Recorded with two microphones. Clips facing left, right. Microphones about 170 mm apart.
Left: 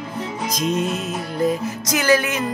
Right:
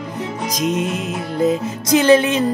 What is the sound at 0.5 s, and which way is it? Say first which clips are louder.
Music: right 1 dB; 15° right (ahead or behind).